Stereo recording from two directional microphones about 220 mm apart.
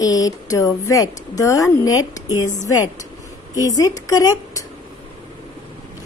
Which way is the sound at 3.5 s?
15° left (ahead or behind).